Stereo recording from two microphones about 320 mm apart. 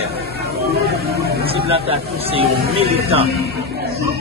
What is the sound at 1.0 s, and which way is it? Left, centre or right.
Vehicle, right.